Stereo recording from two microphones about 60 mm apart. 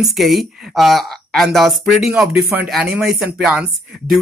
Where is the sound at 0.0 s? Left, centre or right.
Centre.